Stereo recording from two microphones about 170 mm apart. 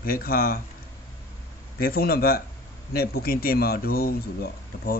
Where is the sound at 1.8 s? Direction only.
65° left (ahead or behind).